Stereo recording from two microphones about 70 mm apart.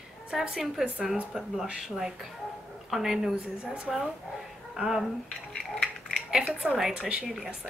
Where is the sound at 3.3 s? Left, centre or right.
Centre.